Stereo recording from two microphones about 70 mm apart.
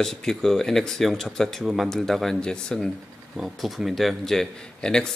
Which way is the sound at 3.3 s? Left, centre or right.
Centre.